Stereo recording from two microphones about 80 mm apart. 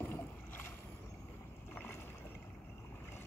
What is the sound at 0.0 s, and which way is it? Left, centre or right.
Boat, left.